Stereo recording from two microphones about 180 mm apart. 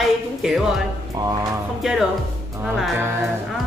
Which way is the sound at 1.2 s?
20° right (ahead or behind).